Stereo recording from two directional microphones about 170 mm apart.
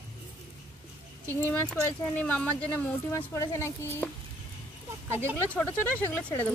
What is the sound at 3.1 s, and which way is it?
Speech, 15° left (ahead or behind).